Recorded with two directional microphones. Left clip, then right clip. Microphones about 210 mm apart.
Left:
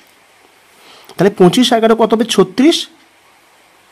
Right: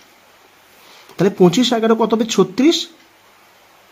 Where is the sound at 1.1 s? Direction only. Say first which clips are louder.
Left 4 dB; 20° left (ahead or behind).